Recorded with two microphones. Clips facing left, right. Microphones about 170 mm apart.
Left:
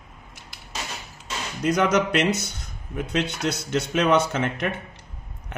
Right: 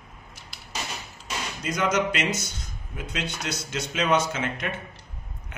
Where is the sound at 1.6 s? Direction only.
65° left (ahead or behind).